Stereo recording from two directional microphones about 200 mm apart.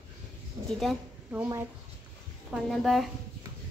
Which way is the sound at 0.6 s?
20° right (ahead or behind).